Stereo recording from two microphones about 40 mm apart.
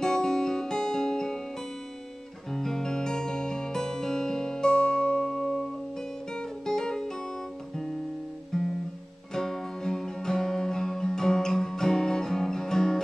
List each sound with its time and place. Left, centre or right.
0.0 s music: centre
2.5 s music: centre
5.3 s music: centre
8.5 s guitar: centre
9.3 s music: centre